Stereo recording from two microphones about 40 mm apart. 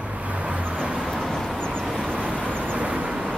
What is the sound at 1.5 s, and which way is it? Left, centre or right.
Vehicle, centre.